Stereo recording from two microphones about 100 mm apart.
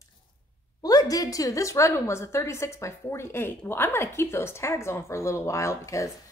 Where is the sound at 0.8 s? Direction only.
40° left (ahead or behind).